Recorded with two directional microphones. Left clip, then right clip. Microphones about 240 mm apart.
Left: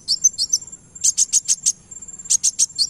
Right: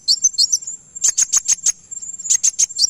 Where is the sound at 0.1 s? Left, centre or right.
Right.